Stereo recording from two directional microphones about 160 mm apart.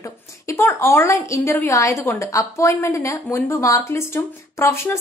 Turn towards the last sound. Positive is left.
turn(degrees=15)  # may be behind; listen again after turning